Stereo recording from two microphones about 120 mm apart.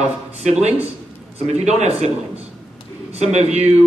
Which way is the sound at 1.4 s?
65° right (ahead or behind).